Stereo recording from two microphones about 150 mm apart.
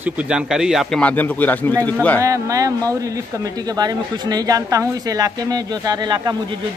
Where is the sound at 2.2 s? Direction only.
20° right (ahead or behind).